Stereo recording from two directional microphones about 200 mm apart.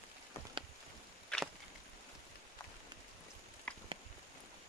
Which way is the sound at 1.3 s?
5° left (ahead or behind).